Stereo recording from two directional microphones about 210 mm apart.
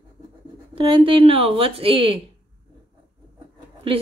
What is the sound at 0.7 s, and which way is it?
Speech, 25° right (ahead or behind).